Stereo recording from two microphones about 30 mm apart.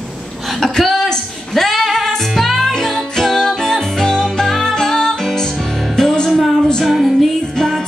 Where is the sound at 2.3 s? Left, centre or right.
Centre.